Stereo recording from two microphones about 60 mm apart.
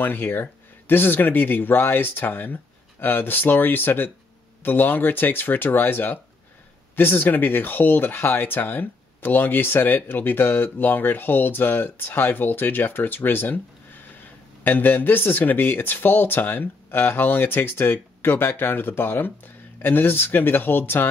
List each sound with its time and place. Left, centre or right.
0.0 s speech: left